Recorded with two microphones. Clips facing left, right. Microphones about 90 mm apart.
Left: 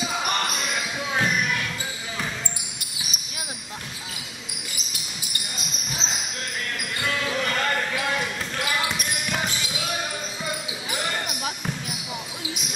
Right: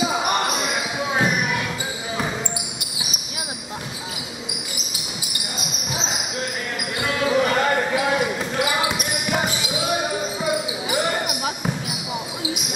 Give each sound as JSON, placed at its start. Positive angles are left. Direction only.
{"t": 0.0, "sound": "basketball bounce", "side_deg": -15}
{"t": 7.0, "sound": "basketball bounce", "side_deg": -15}